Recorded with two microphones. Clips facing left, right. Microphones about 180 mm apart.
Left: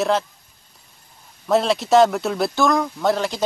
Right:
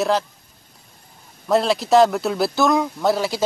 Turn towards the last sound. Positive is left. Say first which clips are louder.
# right 1 dB
turn(degrees=-5)  # may be behind; listen again after turning